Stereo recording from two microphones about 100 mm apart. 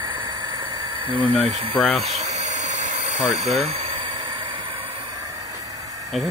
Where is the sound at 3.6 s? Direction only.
90° right.